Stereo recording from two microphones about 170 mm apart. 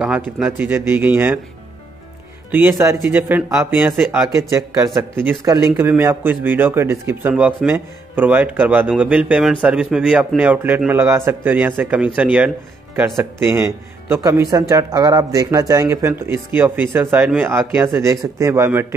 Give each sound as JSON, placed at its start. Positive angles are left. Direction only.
{"t": 0.4, "sound": "speech", "side_deg": -15}
{"t": 2.5, "sound": "speech", "side_deg": -15}